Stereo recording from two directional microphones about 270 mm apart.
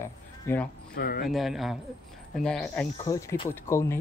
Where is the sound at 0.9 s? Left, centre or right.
Left.